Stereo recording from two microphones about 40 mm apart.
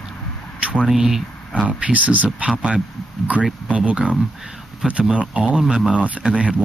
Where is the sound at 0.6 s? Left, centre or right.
Right.